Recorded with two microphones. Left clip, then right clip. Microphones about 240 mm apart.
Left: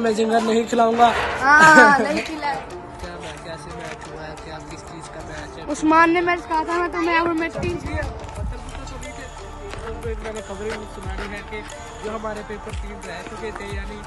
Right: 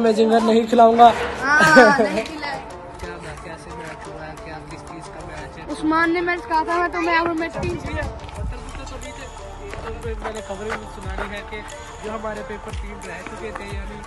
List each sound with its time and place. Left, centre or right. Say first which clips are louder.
0.0 s speech: right 3 dB; centre
1.4 s a woman's voice: left 2 dB; centre
5.8 s a woman's voice: left 4 dB; left
6.7 s speech: even; centre
11.3 s speech: even; centre